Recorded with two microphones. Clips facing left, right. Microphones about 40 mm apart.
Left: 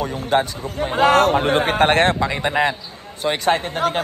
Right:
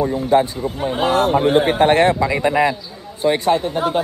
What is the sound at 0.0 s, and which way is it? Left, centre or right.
A man's voice, left.